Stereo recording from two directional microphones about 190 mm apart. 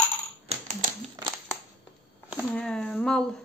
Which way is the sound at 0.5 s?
40° right (ahead or behind).